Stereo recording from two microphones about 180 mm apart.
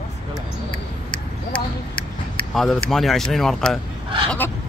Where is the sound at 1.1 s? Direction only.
25° left (ahead or behind).